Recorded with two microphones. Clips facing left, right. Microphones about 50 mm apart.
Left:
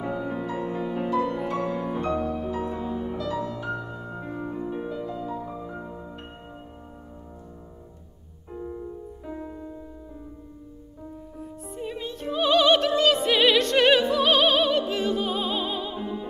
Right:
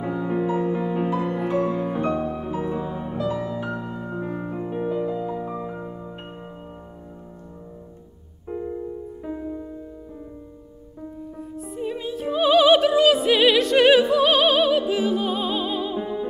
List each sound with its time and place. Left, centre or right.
0.0 s music: centre
5.7 s music: centre
8.5 s music: right
11.3 s music: centre